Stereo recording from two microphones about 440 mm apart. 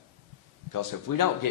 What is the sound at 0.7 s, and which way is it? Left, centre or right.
Speech, left.